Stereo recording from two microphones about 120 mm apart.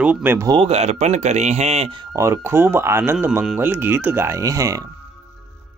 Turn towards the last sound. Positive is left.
turn(degrees=-25)  # may be behind; listen again after turning